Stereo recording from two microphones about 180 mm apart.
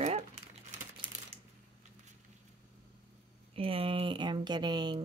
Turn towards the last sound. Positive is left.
turn(degrees=-25)  # may be behind; listen again after turning